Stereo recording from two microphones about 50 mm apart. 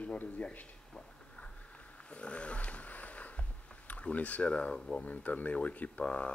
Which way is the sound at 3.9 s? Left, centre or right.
Left.